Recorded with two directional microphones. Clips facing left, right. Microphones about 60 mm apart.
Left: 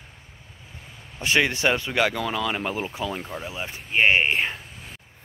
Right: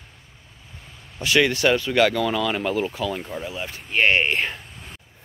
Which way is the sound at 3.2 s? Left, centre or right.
Centre.